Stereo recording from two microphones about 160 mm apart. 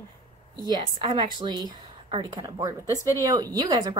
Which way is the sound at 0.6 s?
30° right (ahead or behind).